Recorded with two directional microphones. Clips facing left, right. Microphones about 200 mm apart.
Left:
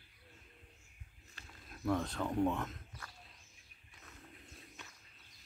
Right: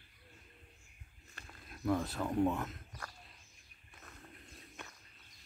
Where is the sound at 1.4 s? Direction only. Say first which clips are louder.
Right 3 dB; 55° right (ahead or behind).